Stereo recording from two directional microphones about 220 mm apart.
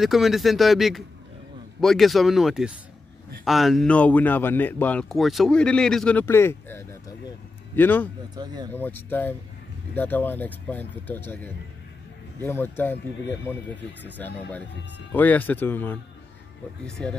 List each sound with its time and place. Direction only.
0.0 s a man's voice: centre (ahead or behind)
8.4 s speech: 20° right (ahead or behind)
8.7 s a man's voice: 10° left (ahead or behind)